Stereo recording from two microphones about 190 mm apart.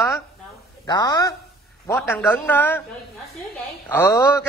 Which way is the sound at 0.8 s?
20° left (ahead or behind).